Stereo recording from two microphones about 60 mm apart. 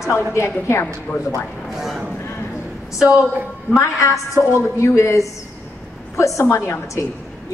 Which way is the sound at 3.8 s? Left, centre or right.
Left.